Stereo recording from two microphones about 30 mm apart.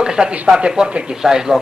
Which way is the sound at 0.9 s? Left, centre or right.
Right.